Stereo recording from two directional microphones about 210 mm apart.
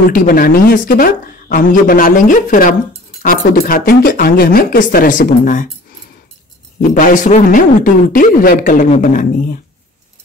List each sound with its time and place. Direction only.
0.1 s speech: 40° left (ahead or behind)
6.8 s speech: 40° left (ahead or behind)